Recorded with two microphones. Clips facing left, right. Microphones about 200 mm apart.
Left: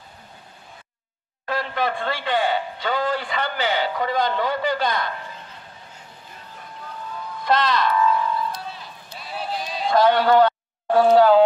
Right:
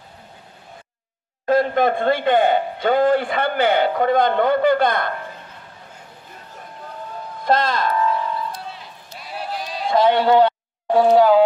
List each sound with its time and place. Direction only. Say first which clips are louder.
1.4 s a man's voice: right 8 dB; 45° right (ahead or behind)
7.4 s music: right 1 dB; 50° right (ahead or behind)
9.2 s run: even; 10° right (ahead or behind)
9.9 s speech: right 1 dB; 25° right (ahead or behind)